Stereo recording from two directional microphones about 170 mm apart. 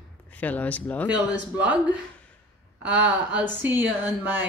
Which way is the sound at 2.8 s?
10° right (ahead or behind).